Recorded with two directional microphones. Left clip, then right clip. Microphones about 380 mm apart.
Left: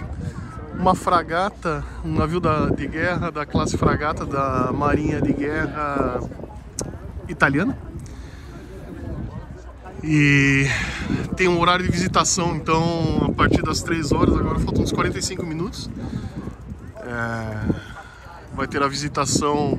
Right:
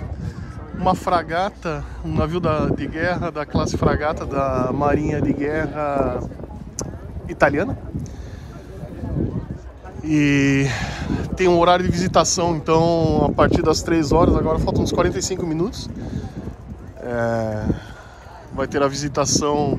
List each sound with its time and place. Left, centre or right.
0.7 s speech: centre
6.8 s a sound: centre
10.0 s speech: centre